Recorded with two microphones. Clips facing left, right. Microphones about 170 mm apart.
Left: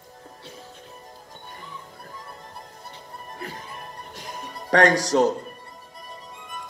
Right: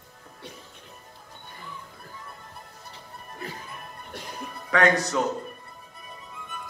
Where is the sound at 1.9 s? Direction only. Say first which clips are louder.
Left 3 dB; 35° left (ahead or behind).